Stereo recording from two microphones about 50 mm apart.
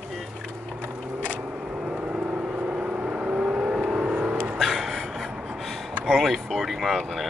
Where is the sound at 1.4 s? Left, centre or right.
Right.